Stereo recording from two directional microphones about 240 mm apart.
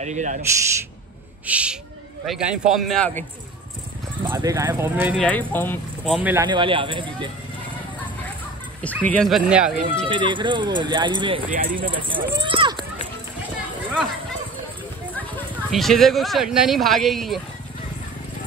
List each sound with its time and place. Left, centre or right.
0.0 s speech: right
1.4 s speech: centre
4.2 s speech: centre
5.2 s speech: centre
6.2 s speech: centre
8.8 s speech: centre
10.0 s speech: centre
11.5 s speech: right
12.1 s speech: right
15.1 s speech: centre